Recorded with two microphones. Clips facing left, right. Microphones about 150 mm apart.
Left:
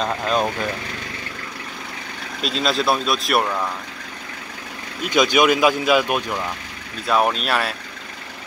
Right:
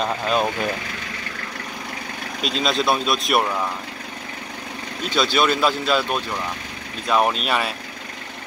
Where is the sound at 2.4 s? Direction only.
Centre (ahead or behind).